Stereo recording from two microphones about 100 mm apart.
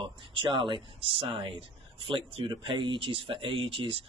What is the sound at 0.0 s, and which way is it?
Speech, 55° right (ahead or behind).